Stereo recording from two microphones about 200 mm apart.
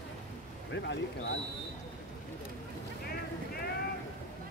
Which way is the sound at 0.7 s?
65° left (ahead or behind).